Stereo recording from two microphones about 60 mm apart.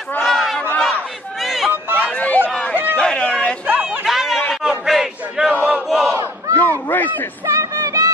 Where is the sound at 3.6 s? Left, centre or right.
Right.